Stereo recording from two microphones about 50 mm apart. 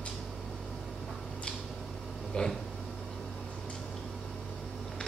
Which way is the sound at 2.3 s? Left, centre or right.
Centre.